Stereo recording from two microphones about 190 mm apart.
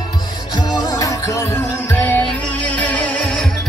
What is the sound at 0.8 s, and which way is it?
Music, 15° left (ahead or behind).